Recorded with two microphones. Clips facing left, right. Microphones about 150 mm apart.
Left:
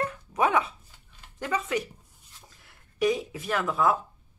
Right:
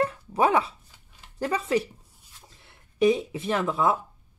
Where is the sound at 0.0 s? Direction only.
30° right (ahead or behind).